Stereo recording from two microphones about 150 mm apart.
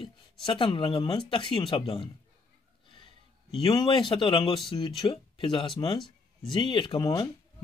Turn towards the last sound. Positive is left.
turn(degrees=30)  # may be behind; listen again after turning